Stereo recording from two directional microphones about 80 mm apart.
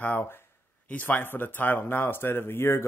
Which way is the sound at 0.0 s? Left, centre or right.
Left.